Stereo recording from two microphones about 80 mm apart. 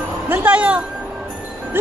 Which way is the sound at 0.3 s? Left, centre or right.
Centre.